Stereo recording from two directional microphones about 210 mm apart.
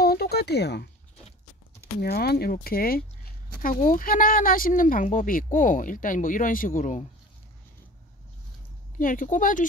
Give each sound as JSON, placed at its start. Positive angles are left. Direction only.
{"t": 0.0, "sound": "a sound", "side_deg": 45}
{"t": 2.0, "sound": "speech", "side_deg": 50}
{"t": 8.9, "sound": "speech", "side_deg": 40}